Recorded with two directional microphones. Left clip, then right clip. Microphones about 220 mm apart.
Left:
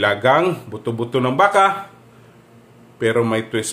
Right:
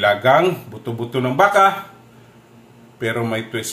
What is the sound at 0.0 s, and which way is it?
A man's voice, 40° left (ahead or behind).